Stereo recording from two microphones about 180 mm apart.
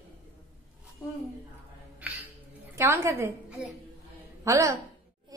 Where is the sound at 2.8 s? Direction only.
15° right (ahead or behind).